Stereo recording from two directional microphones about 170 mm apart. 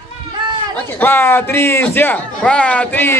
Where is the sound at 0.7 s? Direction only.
10° left (ahead or behind).